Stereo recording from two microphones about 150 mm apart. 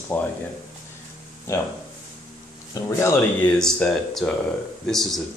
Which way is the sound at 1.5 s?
15° left (ahead or behind).